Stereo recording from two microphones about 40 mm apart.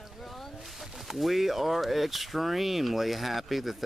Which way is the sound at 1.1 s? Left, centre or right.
Centre.